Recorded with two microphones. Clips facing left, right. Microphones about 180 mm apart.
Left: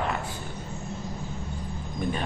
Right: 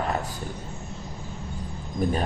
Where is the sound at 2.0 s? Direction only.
40° right (ahead or behind).